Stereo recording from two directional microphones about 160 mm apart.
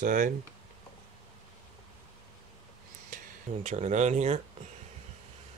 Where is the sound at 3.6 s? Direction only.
45° right (ahead or behind).